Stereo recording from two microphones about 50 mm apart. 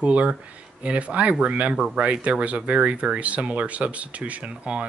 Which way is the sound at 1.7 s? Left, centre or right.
Centre.